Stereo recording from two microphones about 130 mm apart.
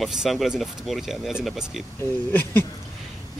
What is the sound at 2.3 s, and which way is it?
Speech, 15° left (ahead or behind).